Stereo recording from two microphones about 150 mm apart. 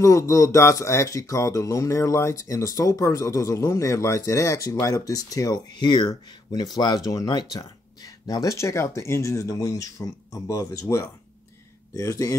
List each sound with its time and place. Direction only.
0.0 s speech: 20° left (ahead or behind)